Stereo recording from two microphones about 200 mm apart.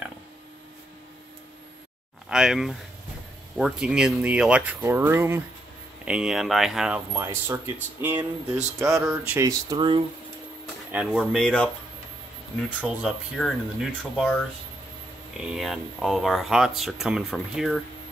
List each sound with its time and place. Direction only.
2.2 s speech: 5° right (ahead or behind); by 10.0 s 25° right (ahead or behind)
10.9 s speech: 5° right (ahead or behind)
15.4 s speech: centre (ahead or behind)